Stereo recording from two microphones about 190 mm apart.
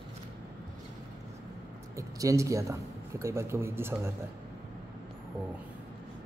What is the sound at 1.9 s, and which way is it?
Speech, 15° right (ahead or behind).